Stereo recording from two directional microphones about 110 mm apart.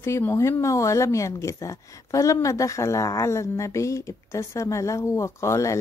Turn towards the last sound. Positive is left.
turn(degrees=25)  # may be behind; listen again after turning